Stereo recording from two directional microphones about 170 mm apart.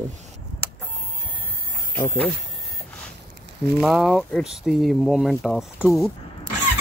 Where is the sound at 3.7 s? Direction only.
5° right (ahead or behind).